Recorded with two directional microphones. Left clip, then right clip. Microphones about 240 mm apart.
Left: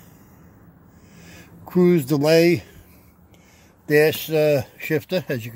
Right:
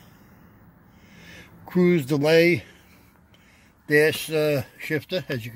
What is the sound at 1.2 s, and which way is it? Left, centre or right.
Speech, centre.